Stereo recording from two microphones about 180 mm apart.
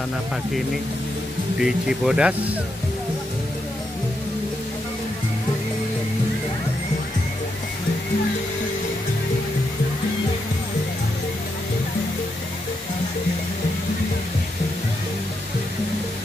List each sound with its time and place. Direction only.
1.6 s speech: 5° right (ahead or behind)